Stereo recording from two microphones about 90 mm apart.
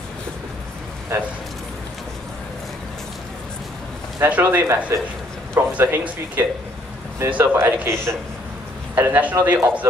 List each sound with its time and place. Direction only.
1.1 s a man's voice: 30° right (ahead or behind)
4.3 s a man's voice: 20° right (ahead or behind)